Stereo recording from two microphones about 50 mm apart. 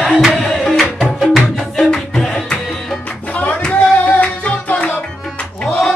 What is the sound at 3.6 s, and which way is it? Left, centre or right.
Music, left.